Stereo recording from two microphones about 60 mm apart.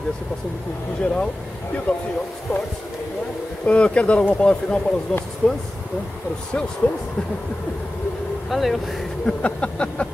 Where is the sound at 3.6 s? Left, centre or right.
Centre.